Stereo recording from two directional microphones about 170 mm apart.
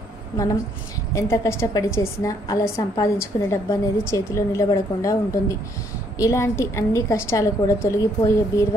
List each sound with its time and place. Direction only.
1.1 s a woman's voice: 15° left (ahead or behind)